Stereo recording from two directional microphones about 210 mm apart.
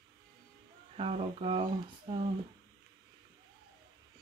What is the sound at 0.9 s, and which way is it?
Speech, 25° right (ahead or behind).